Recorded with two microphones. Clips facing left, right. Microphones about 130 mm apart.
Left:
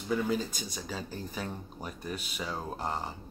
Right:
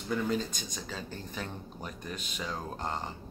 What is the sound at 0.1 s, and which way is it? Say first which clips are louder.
Speech: left 1 dB; 5° left (ahead or behind).